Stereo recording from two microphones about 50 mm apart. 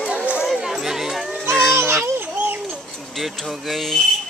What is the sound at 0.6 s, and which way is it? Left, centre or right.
Children playing, centre.